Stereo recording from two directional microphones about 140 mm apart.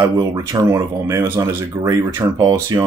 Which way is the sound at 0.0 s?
25° right (ahead or behind).